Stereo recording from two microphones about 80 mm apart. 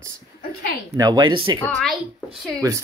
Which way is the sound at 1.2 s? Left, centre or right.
Right.